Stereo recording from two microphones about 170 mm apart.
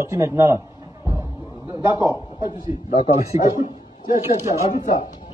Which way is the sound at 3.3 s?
20° right (ahead or behind).